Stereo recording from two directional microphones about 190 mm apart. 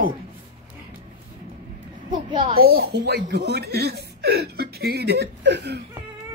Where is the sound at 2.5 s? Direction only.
55° right (ahead or behind).